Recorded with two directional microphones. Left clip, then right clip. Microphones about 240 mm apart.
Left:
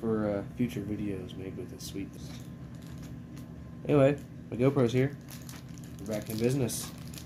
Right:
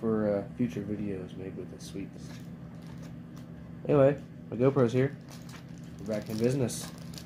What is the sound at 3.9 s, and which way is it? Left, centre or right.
Speech, centre.